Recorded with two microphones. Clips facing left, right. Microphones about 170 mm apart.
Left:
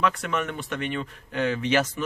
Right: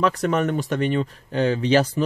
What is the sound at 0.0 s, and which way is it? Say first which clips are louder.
Speech: right 5 dB; 40° right (ahead or behind).